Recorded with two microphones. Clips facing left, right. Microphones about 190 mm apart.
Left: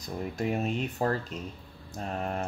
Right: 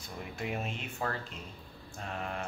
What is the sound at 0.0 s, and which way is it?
Speech, 40° left (ahead or behind).